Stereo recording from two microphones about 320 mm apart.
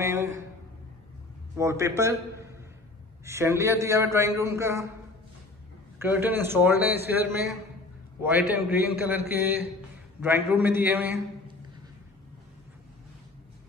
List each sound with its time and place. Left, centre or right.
0.0 s a man's voice: centre
1.6 s a man's voice: centre
3.3 s a man's voice: centre
5.9 s a man's voice: centre